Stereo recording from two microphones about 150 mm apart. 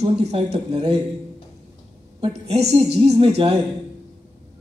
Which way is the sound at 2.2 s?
45° right (ahead or behind).